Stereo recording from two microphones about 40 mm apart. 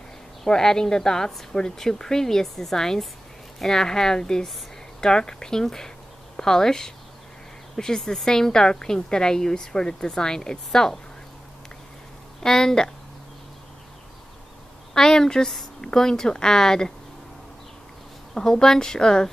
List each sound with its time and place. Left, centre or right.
0.5 s a woman's voice: centre
12.4 s a woman's voice: centre
15.0 s a woman's voice: centre
18.3 s a woman's voice: centre